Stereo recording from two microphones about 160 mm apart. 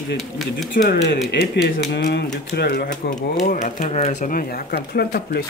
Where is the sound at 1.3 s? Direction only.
80° left.